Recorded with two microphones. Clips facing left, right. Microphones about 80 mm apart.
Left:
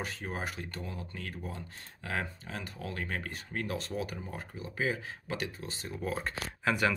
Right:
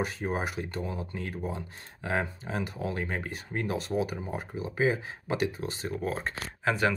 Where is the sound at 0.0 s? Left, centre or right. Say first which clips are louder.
Right 7 dB; centre.